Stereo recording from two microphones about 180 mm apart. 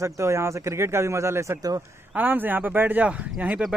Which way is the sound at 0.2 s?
15° right (ahead or behind).